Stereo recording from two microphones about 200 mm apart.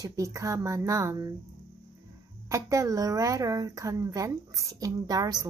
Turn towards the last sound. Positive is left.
turn(degrees=-20)  # may be behind; listen again after turning